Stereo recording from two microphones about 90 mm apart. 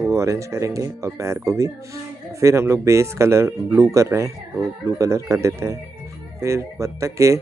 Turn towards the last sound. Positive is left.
turn(degrees=-35)  # may be behind; listen again after turning